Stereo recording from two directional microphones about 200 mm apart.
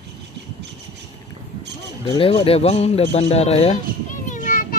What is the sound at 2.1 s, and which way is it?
Speech, 25° left (ahead or behind).